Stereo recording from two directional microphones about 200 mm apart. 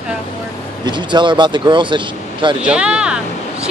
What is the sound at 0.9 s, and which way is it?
Speech, 25° right (ahead or behind).